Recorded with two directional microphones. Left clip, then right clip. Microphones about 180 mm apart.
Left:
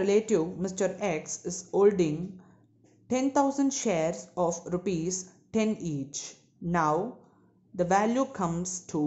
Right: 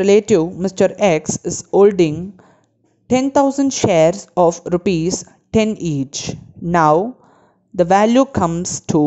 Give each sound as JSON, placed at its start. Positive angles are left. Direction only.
{"t": 0.0, "sound": "speech", "side_deg": -40}